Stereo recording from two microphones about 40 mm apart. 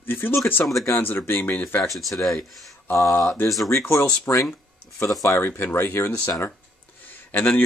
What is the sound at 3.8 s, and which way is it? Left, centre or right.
Speech, left.